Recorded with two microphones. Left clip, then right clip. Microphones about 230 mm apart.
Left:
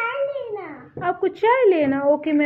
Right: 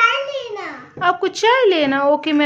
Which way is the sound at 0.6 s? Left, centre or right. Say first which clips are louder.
Right 7 dB; centre.